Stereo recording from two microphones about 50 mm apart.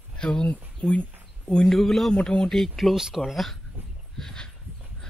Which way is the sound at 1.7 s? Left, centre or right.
Centre.